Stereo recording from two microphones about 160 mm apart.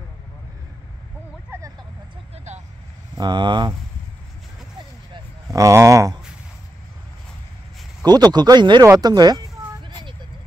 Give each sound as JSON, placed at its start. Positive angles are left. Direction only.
{"t": 1.5, "sound": "vehicle", "side_deg": -15}
{"t": 2.3, "sound": "vehicle", "side_deg": -45}
{"t": 3.2, "sound": "speech", "side_deg": -30}
{"t": 5.1, "sound": "a sound", "side_deg": -20}
{"t": 8.0, "sound": "speech", "side_deg": -25}
{"t": 9.8, "sound": "vehicle", "side_deg": -30}